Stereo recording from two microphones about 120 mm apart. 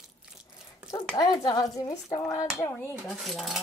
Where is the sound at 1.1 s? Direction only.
35° left (ahead or behind).